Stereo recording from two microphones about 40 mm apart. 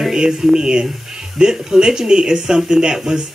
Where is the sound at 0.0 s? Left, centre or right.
Centre.